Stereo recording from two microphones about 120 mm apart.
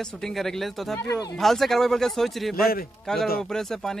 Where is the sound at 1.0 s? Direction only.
30° left (ahead or behind).